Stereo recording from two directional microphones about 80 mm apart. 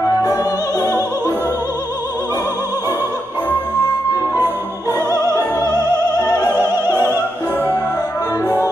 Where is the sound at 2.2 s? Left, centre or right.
Left.